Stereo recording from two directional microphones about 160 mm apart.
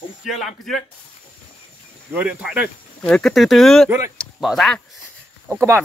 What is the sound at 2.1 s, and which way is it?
Speech, 5° right (ahead or behind).